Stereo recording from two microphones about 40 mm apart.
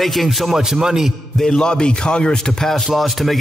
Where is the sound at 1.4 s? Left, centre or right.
Centre.